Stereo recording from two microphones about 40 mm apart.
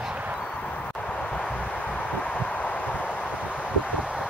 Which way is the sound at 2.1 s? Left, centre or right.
Left.